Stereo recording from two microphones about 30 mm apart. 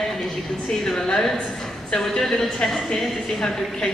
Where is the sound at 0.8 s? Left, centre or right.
Centre.